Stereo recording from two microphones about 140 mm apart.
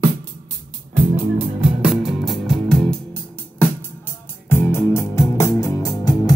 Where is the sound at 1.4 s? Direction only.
10° right (ahead or behind).